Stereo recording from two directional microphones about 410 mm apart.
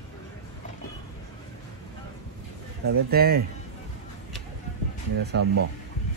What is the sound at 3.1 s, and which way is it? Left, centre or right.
Speech, right.